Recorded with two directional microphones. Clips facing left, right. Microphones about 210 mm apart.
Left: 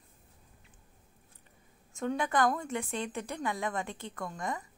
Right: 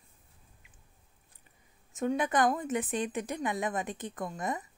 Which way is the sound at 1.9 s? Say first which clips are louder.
Right 2 dB; 20° right (ahead or behind).